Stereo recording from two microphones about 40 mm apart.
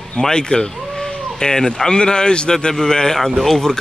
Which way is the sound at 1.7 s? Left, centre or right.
Centre.